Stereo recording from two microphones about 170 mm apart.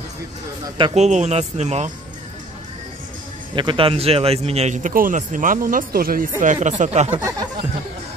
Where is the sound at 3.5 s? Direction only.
30° right (ahead or behind); by 6.3 s 60° right (ahead or behind).